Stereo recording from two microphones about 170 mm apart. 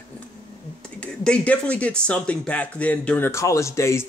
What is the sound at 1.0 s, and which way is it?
Speech, 5° left (ahead or behind).